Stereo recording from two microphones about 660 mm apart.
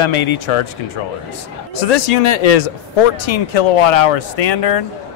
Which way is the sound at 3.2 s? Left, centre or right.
Left.